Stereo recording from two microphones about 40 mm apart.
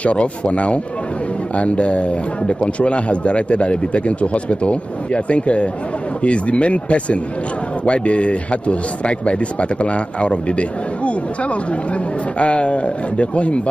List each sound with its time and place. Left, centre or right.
0.0 s speech: left